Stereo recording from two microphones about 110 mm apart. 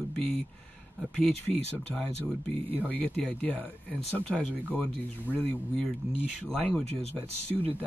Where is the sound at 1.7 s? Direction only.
15° left (ahead or behind).